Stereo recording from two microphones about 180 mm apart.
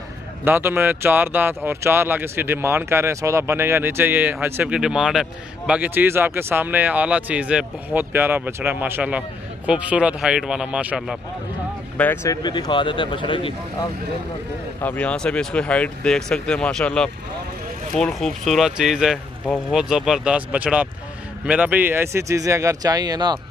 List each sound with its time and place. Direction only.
0.5 s speech: 10° right (ahead or behind)
12.0 s speech: 15° left (ahead or behind); by 13.6 s 30° left (ahead or behind)
14.8 s speech: 10° left (ahead or behind); by 23.4 s 25° right (ahead or behind)